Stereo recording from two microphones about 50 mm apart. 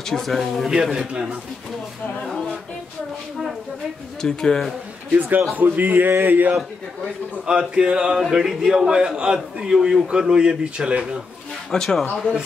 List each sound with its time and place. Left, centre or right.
0.0 s speech: centre
0.9 s a man's voice: centre
4.2 s speech: centre
5.6 s a sound: right
7.4 s a man's voice: centre
11.7 s speech: centre